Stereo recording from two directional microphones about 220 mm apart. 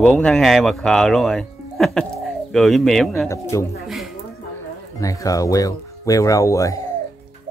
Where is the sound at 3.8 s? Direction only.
Centre (ahead or behind).